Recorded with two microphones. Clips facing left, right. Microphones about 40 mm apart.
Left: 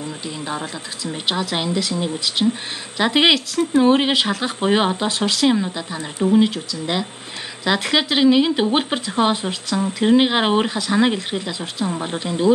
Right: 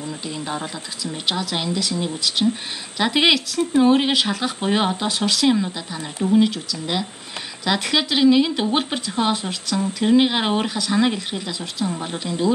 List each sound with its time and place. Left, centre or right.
0.5 s speech: centre; by 12.5 s left